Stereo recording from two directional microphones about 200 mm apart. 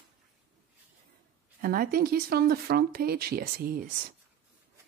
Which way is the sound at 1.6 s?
45° right (ahead or behind).